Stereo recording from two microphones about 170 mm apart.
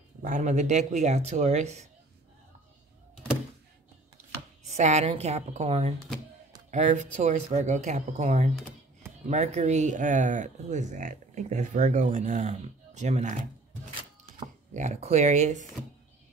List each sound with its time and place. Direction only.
0.2 s speech: 45° right (ahead or behind)
4.6 s a woman's voice: 40° right (ahead or behind)
14.7 s speech: 45° right (ahead or behind)